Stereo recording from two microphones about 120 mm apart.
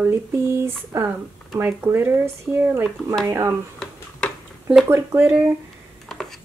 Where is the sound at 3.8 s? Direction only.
10° left (ahead or behind).